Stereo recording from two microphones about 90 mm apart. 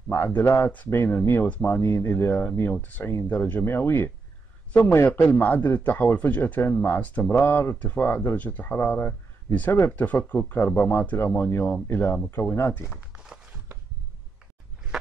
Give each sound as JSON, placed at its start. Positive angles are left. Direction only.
{"t": 0.1, "sound": "speech", "side_deg": 25}
{"t": 1.4, "sound": "speech", "side_deg": 15}
{"t": 12.8, "sound": "a sound", "side_deg": -5}